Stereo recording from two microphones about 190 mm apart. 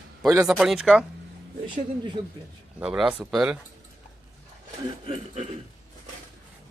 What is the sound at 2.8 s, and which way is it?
Speech, 5° right (ahead or behind).